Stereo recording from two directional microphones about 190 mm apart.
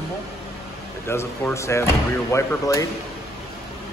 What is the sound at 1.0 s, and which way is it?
Speech, 15° left (ahead or behind).